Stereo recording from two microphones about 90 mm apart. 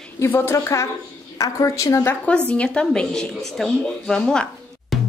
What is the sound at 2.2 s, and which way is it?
A woman's voice, 15° left (ahead or behind).